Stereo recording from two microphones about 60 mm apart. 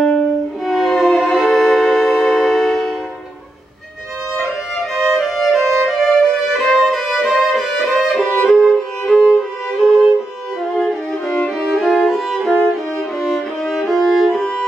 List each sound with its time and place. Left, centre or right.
0.0 s music: centre
0.7 s music: centre
4.9 s music: centre
6.6 s violin: centre
12.6 s music: centre